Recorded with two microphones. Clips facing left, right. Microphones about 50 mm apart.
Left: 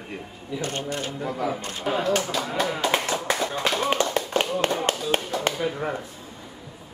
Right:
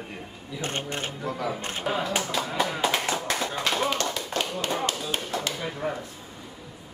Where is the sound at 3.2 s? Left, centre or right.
Centre.